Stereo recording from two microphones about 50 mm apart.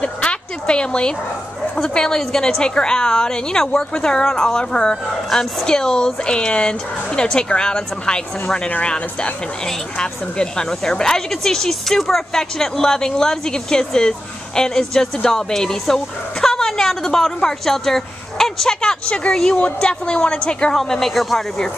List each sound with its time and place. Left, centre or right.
0.0 s a woman's voice: left
20.7 s speech: centre